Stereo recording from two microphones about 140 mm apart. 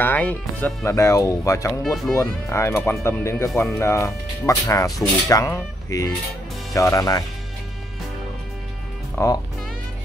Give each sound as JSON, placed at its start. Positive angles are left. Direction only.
{"t": 0.0, "sound": "speech", "side_deg": 10}
{"t": 9.2, "sound": "speech", "side_deg": 15}